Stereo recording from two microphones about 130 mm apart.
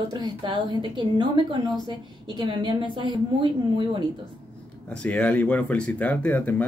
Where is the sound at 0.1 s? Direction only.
30° right (ahead or behind).